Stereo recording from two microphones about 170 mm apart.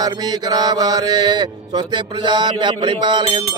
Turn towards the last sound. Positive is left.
turn(degrees=-30)  # may be behind; listen again after turning